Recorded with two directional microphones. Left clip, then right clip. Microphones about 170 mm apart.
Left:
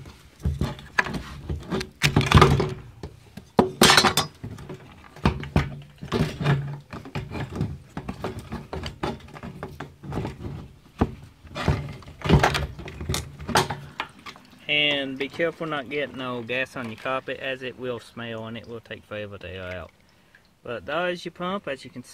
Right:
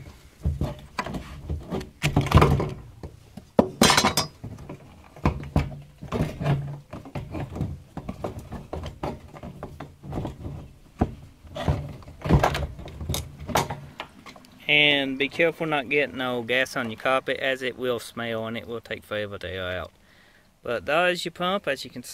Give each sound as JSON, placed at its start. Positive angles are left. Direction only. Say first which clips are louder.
{"t": 0.6, "sound": "a sound", "louder": "left 7 dB", "side_deg": 25}
{"t": 2.3, "sound": "typing", "louder": "left 3 dB", "side_deg": 35}
{"t": 3.5, "sound": "chink", "louder": "left 2 dB", "side_deg": 45}
{"t": 5.2, "sound": "a sound", "louder": "left 2 dB", "side_deg": 30}
{"t": 11.5, "sound": "thunk", "louder": "left 2 dB", "side_deg": 35}
{"t": 14.8, "sound": "speech", "louder": "right 3 dB", "side_deg": -40}